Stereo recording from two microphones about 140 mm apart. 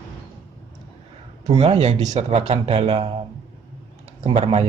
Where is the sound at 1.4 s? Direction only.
45° right (ahead or behind).